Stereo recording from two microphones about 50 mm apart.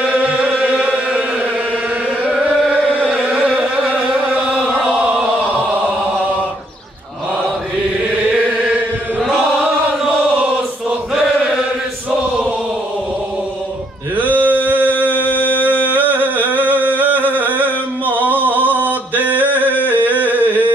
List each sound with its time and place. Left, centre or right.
0.4 s music: centre
0.8 s chant: centre
3.3 s a sound: centre
3.5 s chant: centre
9.2 s chant: centre
14.1 s male singing: right
15.1 s music: left
15.9 s a sound: right